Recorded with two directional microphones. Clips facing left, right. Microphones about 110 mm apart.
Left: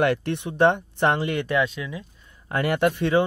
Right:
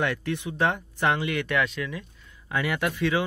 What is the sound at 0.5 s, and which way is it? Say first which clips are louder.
Speech: left 8 dB; 25° left (ahead or behind).